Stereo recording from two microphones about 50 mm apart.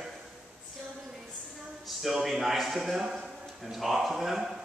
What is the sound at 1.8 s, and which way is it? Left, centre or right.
A man's voice, centre.